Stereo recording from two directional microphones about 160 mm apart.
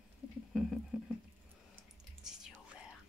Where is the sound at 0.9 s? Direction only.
5° right (ahead or behind).